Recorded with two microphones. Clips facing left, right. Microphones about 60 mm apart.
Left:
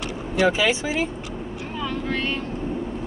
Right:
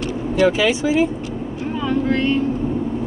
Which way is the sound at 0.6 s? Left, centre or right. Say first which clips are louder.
Right 4 dB; left.